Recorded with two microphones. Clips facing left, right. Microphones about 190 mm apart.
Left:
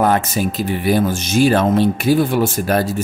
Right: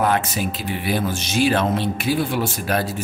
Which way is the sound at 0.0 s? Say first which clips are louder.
Left 4 dB; 40° left (ahead or behind).